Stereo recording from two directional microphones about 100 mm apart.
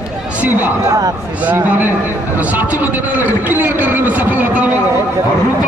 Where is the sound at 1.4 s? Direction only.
15° right (ahead or behind).